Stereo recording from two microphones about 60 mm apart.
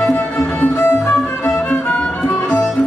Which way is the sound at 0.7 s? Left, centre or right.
Left.